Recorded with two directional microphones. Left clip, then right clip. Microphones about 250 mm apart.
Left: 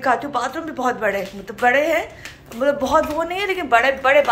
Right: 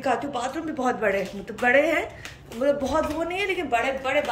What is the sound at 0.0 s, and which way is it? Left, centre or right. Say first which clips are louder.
A woman's voice: left 6 dB; centre.